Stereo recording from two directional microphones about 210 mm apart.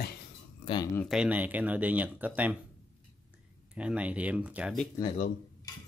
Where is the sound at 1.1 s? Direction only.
5° right (ahead or behind).